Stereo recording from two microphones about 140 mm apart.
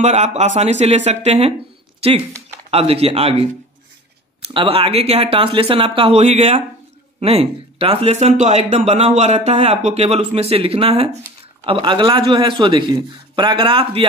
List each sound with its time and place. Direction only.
0.0 s speech: 50° right (ahead or behind)
2.0 s a sound: 45° right (ahead or behind)
2.7 s speech: 45° right (ahead or behind)
4.6 s speech: 40° right (ahead or behind)